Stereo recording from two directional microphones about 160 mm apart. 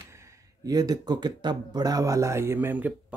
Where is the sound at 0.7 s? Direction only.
25° right (ahead or behind).